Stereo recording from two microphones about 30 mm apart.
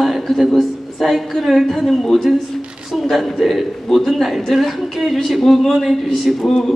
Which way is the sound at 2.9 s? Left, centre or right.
Centre.